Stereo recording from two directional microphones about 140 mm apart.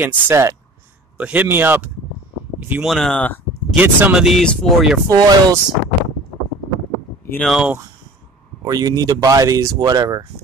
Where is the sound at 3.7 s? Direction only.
15° right (ahead or behind).